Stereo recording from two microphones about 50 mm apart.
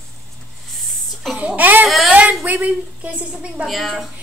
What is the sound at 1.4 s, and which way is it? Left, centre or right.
A woman's voice, right.